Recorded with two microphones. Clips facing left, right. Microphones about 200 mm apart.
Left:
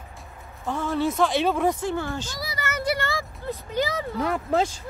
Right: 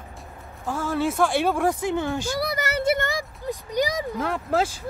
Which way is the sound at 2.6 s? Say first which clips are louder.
Right 1 dB; 30° right (ahead or behind).